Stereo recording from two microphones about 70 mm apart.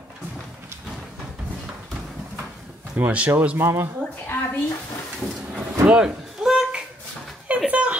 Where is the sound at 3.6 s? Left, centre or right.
Right.